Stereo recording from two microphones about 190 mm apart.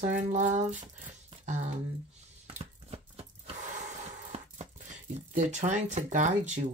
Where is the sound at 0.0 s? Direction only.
40° right (ahead or behind).